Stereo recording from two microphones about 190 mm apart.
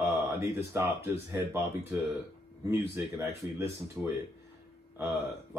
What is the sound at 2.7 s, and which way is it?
Speech, 15° right (ahead or behind).